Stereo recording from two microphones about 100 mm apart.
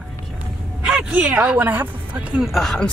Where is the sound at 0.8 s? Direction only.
10° right (ahead or behind).